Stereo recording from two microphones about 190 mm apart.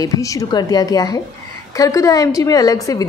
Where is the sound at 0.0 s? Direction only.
15° left (ahead or behind).